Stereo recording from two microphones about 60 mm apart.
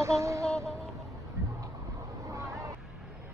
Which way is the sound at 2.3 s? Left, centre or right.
Right.